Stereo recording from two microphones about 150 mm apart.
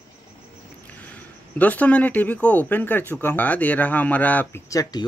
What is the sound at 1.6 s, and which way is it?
Speech, 10° left (ahead or behind).